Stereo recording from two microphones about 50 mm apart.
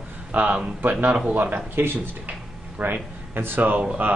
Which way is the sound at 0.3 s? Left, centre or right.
Right.